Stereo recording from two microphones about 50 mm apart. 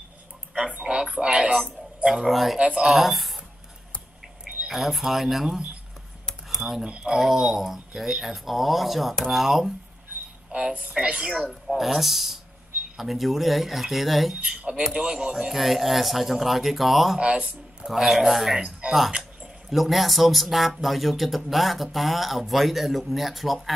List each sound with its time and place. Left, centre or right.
0.6 s a sound: centre
2.0 s speech: centre
4.6 s speech: centre
6.9 s speech: centre
7.2 s speech: centre
10.8 s speech: centre
11.6 s speech: centre
14.4 s speech: centre
17.2 s speech: right
17.8 s speech: centre
18.6 s speech: centre
19.7 s speech: centre